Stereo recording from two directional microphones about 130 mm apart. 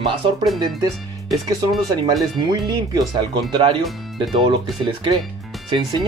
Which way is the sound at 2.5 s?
30° right (ahead or behind).